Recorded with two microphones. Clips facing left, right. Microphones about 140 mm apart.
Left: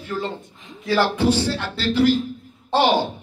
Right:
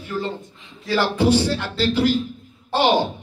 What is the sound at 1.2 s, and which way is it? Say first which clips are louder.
Speech: right 2 dB; 15° right (ahead or behind).